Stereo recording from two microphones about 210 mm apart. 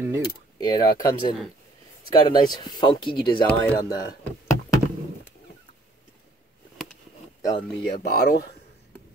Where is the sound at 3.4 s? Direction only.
5° left (ahead or behind).